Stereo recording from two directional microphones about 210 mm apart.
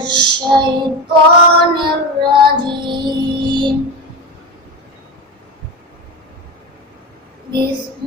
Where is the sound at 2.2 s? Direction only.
20° right (ahead or behind).